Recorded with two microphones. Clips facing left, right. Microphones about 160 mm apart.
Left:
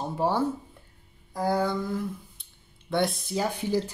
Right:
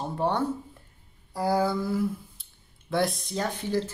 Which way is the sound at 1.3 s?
5° right (ahead or behind).